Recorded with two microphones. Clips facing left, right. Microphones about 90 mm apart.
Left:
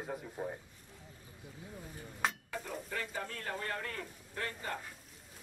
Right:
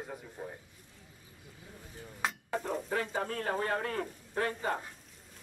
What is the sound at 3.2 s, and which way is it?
Speech, 50° right (ahead or behind).